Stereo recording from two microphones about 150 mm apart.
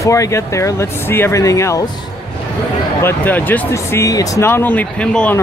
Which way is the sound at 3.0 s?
10° left (ahead or behind).